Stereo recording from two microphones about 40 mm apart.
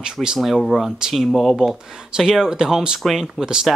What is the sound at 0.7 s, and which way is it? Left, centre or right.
Speech, centre.